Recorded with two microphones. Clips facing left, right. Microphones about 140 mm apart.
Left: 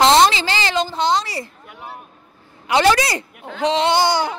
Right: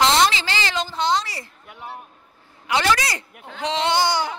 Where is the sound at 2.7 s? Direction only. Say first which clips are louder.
Left 5 dB; 30° left (ahead or behind).